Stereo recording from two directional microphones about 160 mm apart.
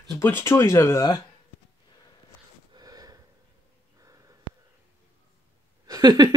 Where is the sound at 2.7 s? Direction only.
25° right (ahead or behind).